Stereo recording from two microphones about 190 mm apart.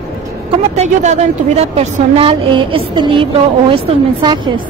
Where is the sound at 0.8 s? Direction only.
35° right (ahead or behind).